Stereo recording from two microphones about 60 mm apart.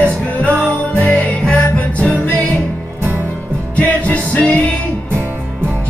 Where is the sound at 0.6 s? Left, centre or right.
Centre.